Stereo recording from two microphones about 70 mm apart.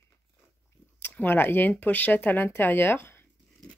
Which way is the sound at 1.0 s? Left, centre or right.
Left.